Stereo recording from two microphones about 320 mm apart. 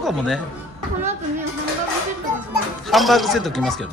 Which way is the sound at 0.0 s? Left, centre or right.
Centre.